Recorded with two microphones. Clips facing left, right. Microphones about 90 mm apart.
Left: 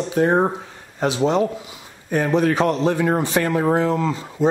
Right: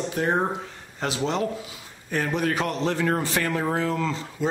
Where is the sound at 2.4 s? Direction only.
30° left (ahead or behind).